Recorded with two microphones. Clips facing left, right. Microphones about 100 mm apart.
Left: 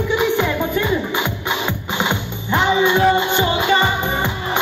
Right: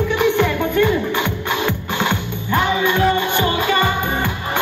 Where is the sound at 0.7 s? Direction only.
15° left (ahead or behind).